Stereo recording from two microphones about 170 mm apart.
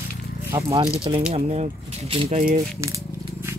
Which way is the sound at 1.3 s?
35° right (ahead or behind).